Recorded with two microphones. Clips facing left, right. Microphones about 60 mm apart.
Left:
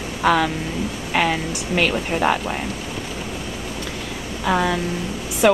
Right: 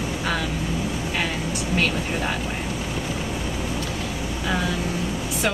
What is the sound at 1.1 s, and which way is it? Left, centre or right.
A woman's voice, left.